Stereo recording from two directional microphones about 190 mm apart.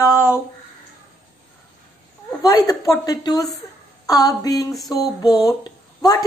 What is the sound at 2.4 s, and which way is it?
Speech, 20° left (ahead or behind).